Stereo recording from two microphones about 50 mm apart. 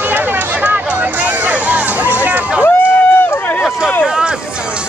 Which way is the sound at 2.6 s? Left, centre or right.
Left.